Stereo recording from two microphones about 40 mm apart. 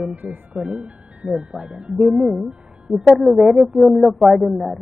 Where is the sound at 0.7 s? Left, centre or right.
Right.